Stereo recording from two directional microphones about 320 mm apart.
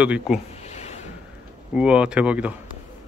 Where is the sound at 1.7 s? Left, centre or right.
Centre.